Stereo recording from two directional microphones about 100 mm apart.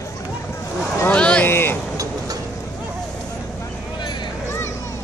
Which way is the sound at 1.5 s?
20° left (ahead or behind).